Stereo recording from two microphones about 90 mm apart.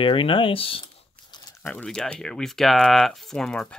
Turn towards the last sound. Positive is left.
turn(degrees=5)  # may be behind; listen again after turning